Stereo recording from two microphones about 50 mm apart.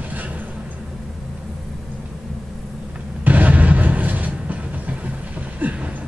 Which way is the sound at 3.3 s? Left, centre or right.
Right.